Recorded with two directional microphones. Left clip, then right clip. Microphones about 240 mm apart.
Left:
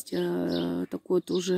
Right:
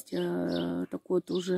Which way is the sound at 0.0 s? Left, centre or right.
Centre.